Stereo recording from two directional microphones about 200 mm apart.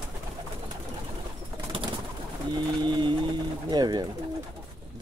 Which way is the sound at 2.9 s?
25° right (ahead or behind).